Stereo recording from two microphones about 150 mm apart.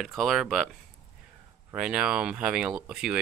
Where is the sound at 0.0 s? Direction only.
Centre (ahead or behind).